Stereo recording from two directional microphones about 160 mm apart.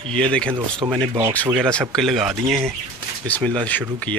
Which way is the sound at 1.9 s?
Centre (ahead or behind).